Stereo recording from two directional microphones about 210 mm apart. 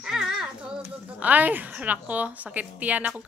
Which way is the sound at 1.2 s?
10° right (ahead or behind).